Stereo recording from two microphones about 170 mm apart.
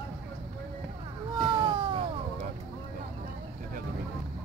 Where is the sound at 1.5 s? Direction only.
30° right (ahead or behind).